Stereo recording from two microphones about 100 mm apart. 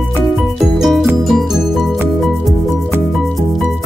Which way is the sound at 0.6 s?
5° right (ahead or behind).